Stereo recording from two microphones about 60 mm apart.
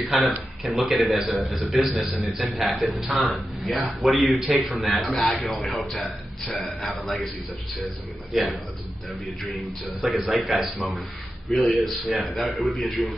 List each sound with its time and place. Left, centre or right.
0.0 s a man's voice: centre